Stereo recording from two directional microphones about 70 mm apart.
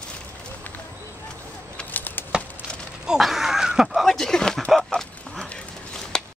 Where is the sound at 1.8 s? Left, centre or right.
Left.